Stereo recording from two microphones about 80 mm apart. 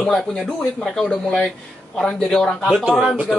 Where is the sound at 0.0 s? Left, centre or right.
Centre.